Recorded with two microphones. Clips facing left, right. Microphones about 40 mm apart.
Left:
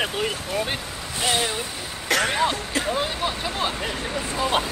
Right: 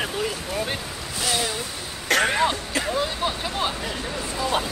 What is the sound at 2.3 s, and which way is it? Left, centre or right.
Speech, centre.